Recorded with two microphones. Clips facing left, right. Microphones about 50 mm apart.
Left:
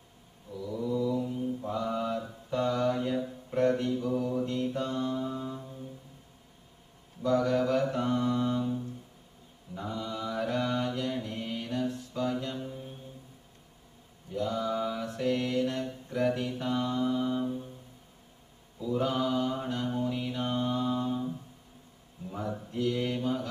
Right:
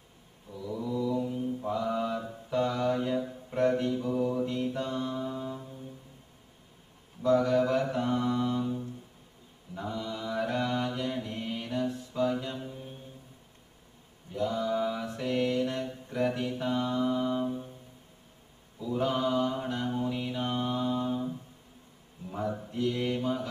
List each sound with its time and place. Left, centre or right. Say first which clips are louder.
0.7 s mantra: left 1 dB; centre
7.2 s mantra: right 2 dB; centre
9.8 s mantra: even; centre
14.3 s mantra: right 1 dB; centre
18.8 s mantra: even; centre
22.3 s mantra: right 2 dB; centre